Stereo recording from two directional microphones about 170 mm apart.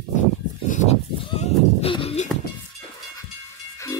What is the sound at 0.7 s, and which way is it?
Sheep, 45° left (ahead or behind).